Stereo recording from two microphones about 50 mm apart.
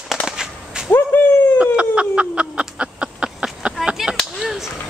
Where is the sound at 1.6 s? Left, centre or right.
Right.